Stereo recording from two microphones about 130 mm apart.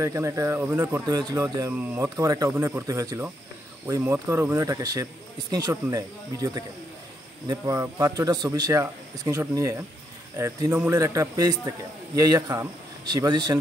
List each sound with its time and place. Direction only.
0.0 s speech: 25° right (ahead or behind)
1.0 s speech: 30° right (ahead or behind)
1.7 s speech: 15° right (ahead or behind)
2.0 s speech: 25° right (ahead or behind)